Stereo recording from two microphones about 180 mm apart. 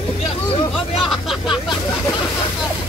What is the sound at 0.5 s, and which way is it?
Hubbub, 30° left (ahead or behind).